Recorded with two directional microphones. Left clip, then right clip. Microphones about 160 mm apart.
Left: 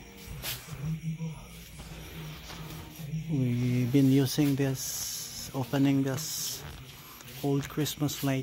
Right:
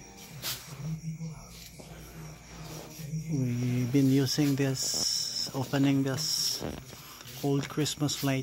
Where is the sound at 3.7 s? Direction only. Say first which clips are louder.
Left 1 dB; 10° left (ahead or behind).